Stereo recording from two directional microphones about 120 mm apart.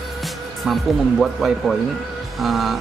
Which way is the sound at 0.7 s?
5° right (ahead or behind).